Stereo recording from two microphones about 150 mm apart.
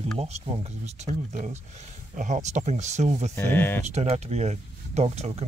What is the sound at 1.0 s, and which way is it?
Speech, 55° right (ahead or behind).